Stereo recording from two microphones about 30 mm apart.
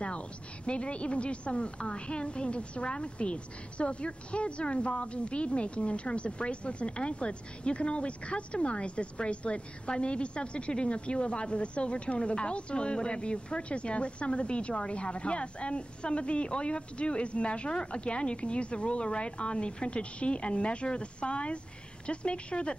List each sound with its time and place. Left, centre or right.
0.7 s a woman's voice: left